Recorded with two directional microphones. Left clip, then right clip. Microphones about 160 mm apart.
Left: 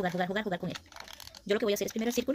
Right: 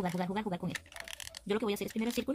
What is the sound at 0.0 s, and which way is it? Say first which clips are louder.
Speech: left 4 dB; 10° right (ahead or behind).